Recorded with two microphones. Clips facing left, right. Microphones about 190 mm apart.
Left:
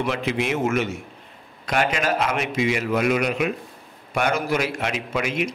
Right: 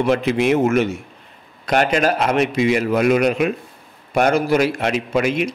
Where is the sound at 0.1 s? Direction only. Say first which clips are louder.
Right 8 dB; 50° right (ahead or behind).